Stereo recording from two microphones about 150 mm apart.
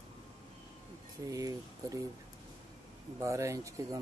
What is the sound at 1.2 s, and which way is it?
Speech, 25° right (ahead or behind).